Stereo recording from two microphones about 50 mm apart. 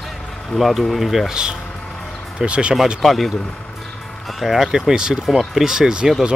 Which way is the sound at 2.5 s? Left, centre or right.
Right.